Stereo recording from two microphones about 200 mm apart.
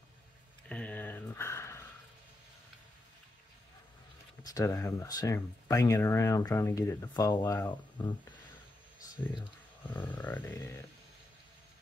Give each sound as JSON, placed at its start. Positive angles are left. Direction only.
{"t": 0.7, "sound": "a sound", "side_deg": 5}
{"t": 4.4, "sound": "speech", "side_deg": 20}
{"t": 9.8, "sound": "speech", "side_deg": 10}